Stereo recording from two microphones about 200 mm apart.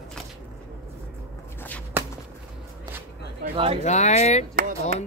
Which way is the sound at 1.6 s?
10° left (ahead or behind).